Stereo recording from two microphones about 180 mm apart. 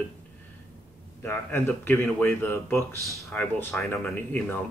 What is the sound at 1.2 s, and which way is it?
Speech, 10° left (ahead or behind).